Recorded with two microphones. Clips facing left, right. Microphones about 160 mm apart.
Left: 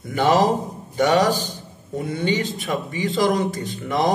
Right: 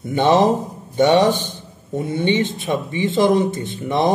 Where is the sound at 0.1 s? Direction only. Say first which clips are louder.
Right 3 dB; 25° right (ahead or behind).